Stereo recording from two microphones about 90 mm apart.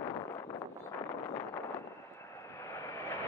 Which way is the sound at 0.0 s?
40° left (ahead or behind).